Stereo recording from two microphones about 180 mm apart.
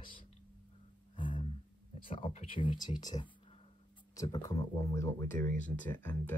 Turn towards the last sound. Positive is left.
turn(degrees=10)  # may be behind; listen again after turning